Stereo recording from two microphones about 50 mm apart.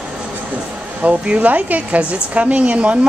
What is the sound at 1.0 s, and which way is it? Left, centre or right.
Speech, right.